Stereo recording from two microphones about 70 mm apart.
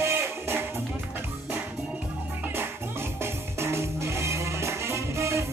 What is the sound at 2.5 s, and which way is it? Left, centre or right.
Music, right.